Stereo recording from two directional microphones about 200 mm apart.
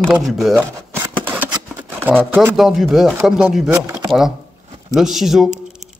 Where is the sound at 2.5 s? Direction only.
Centre (ahead or behind).